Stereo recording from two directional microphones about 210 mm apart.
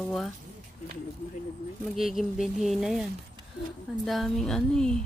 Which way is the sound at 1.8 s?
Centre (ahead or behind).